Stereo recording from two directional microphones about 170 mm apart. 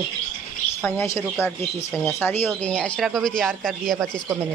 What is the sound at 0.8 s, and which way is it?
Speech, 15° left (ahead or behind).